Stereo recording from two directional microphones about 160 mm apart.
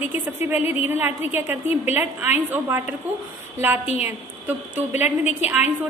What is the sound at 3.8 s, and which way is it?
Speech, 40° left (ahead or behind).